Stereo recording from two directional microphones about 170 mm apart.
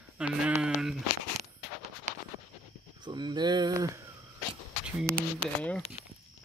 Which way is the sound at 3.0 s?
25° right (ahead or behind).